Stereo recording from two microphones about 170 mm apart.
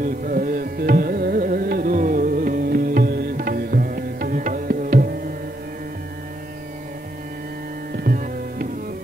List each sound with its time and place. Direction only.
0.0 s music: 55° right (ahead or behind)
7.9 s music: 60° right (ahead or behind)